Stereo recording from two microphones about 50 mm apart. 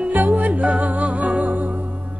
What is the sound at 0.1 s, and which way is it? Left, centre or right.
Music, right.